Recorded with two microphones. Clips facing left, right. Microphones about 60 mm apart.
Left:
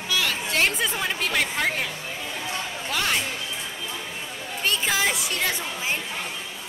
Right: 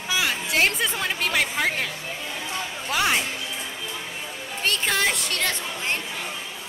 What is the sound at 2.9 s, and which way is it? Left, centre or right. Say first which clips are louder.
Speech: right 3 dB; centre.